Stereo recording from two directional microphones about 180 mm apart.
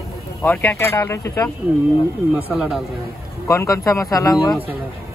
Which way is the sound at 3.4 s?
15° left (ahead or behind).